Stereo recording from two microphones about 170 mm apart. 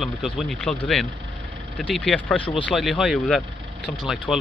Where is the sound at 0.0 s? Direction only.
Centre (ahead or behind).